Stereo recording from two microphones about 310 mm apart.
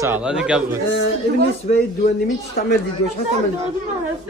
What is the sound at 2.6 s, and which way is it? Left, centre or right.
Speech, left.